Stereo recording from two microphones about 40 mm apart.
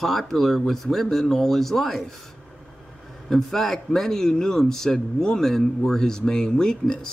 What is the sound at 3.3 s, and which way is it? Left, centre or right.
Speech, centre.